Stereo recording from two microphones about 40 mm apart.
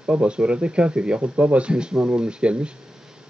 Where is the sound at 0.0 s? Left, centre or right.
Right.